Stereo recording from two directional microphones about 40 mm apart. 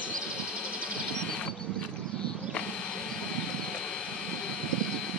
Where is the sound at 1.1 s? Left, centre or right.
Centre.